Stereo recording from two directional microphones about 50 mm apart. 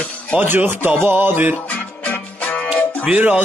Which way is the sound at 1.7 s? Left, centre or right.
Left.